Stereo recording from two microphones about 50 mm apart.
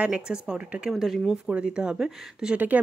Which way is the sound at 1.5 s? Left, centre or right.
Centre.